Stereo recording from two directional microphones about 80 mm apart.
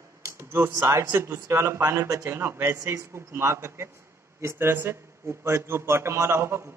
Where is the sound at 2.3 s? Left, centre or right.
Right.